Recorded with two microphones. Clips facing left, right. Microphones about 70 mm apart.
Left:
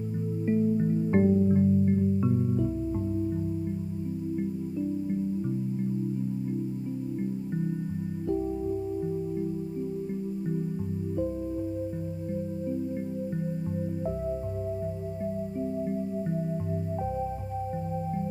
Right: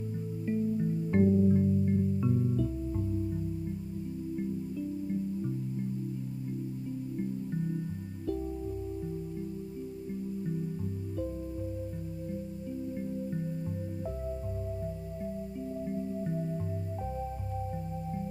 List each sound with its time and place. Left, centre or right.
0.5 s music: left
15.9 s music: centre